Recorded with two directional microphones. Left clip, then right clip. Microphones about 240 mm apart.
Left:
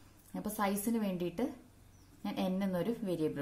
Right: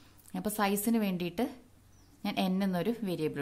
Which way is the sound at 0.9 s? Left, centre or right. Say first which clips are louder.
Right 4 dB; right.